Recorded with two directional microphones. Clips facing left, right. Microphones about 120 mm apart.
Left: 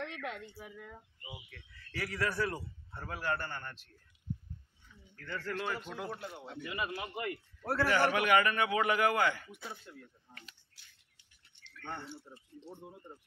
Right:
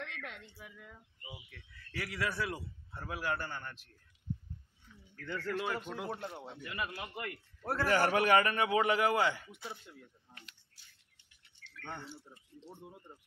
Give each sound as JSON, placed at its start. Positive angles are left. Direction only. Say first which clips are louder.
{"t": 0.0, "sound": "a sound", "louder": "left 5 dB", "side_deg": 50}
{"t": 1.5, "sound": "a man's voice", "louder": "left 1 dB", "side_deg": 0}
{"t": 5.2, "sound": "a man's voice", "louder": "right 1 dB", "side_deg": -15}
{"t": 6.0, "sound": "speech", "louder": "right 1 dB", "side_deg": -30}
{"t": 6.6, "sound": "speech", "louder": "left 3 dB", "side_deg": 10}
{"t": 7.7, "sound": "a man's voice", "louder": "even", "side_deg": -40}